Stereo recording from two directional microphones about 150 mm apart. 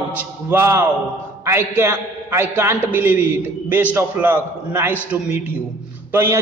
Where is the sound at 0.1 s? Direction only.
10° right (ahead or behind).